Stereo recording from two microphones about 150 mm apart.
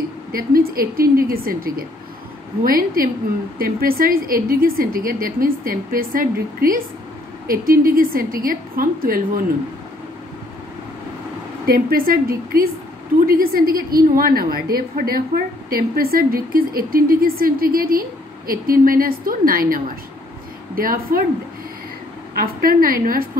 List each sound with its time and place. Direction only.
0.3 s speech: 75° right (ahead or behind)
11.6 s a woman's voice: 75° right (ahead or behind)
22.3 s speech: 75° right (ahead or behind)